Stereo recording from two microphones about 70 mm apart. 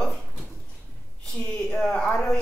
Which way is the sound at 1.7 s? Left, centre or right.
Centre.